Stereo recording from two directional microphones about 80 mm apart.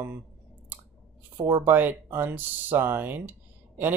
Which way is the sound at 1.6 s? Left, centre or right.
Right.